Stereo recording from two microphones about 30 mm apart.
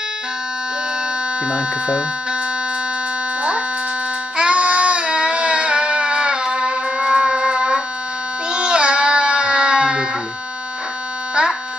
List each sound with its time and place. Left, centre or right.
1.5 s speech: right
4.4 s child singing: right
7.3 s music: right
8.5 s baby cry: right